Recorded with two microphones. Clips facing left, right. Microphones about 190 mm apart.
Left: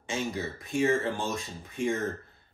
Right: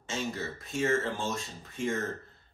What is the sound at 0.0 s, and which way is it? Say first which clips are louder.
A man's voice: left 2 dB; 15° left (ahead or behind).